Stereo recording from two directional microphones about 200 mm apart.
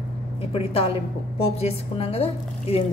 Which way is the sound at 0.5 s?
30° left (ahead or behind).